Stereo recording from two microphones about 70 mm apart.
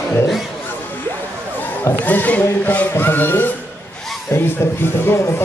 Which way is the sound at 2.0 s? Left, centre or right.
Left.